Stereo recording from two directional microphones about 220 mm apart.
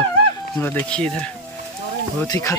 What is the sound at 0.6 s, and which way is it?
Speech, 10° left (ahead or behind).